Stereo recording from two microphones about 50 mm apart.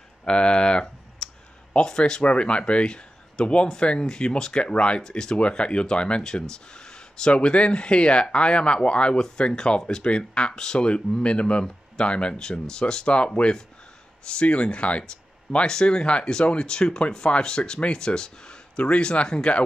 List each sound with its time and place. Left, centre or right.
0.2 s clicking: centre
1.7 s speech: centre